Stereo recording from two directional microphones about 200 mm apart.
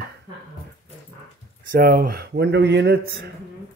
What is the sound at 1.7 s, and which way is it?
Speech, 55° right (ahead or behind).